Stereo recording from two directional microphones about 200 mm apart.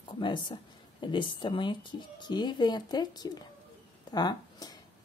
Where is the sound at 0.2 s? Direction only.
25° left (ahead or behind).